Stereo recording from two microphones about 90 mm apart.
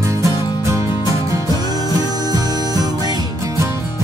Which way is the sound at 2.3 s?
45° right (ahead or behind).